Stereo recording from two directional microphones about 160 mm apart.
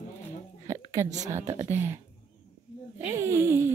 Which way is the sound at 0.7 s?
20° right (ahead or behind).